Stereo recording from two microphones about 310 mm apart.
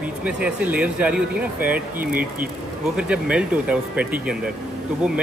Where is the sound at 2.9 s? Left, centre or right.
Centre.